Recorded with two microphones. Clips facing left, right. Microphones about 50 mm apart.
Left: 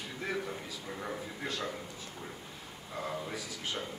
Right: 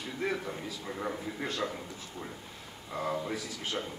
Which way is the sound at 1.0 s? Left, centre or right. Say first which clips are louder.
Right 4 dB; centre.